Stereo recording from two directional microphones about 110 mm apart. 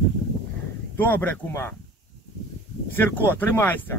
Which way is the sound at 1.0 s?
15° left (ahead or behind).